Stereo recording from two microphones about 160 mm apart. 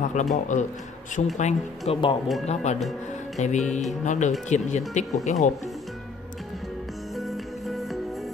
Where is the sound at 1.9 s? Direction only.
30° left (ahead or behind).